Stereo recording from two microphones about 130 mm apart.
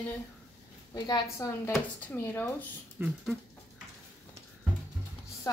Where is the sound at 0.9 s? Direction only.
35° left (ahead or behind).